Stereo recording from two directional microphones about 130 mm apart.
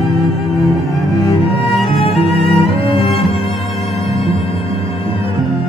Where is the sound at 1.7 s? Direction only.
45° left (ahead or behind).